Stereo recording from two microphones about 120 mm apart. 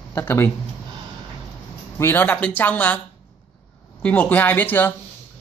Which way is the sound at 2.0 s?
15° left (ahead or behind).